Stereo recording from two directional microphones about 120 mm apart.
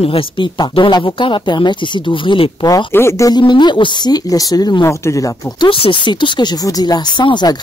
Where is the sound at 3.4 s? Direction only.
40° left (ahead or behind).